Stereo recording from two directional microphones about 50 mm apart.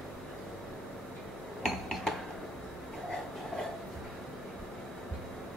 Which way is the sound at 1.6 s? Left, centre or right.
Centre.